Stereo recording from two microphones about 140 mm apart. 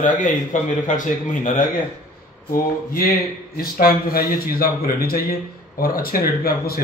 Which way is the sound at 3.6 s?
90° left.